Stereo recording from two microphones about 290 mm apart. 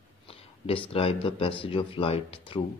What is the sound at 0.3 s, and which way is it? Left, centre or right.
Speech, centre.